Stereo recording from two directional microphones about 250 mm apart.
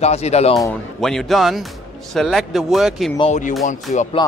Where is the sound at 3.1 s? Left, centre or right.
Left.